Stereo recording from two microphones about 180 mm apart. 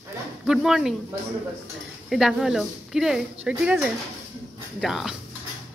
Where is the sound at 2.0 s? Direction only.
Centre (ahead or behind).